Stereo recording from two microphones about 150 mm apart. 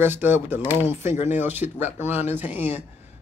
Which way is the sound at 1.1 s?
50° left (ahead or behind).